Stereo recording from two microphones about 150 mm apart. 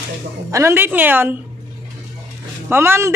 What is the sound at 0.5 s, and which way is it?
Speech, 15° right (ahead or behind).